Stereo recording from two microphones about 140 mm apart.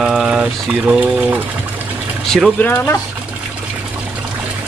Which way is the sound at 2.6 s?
15° left (ahead or behind).